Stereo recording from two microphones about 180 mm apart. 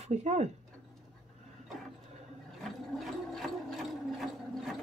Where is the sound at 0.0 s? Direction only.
40° right (ahead or behind).